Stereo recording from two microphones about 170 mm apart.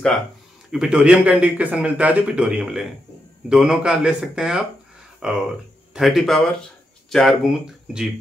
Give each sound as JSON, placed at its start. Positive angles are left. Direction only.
{"t": 0.7, "sound": "speech", "side_deg": -5}